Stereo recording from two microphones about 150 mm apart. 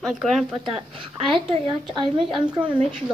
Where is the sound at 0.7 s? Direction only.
35° right (ahead or behind).